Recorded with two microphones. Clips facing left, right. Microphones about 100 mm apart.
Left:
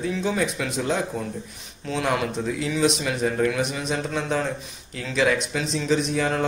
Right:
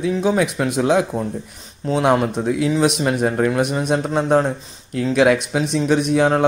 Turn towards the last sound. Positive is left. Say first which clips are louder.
# right 7 dB
turn(degrees=-60)  # may be behind; listen again after turning